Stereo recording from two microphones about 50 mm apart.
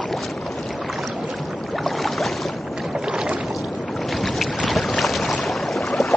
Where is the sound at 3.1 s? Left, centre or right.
Centre.